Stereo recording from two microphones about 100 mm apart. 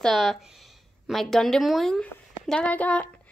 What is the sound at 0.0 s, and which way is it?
Speech, centre (ahead or behind).